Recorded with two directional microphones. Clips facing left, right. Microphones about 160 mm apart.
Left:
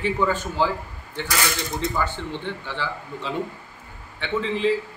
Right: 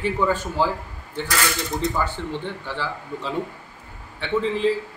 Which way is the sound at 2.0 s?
5° right (ahead or behind).